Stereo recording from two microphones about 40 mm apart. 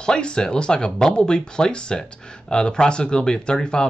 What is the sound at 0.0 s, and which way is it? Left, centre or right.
Speech, left.